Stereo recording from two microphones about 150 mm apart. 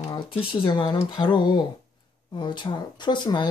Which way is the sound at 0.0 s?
30° left (ahead or behind).